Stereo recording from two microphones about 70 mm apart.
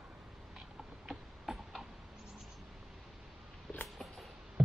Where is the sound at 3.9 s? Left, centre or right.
Centre.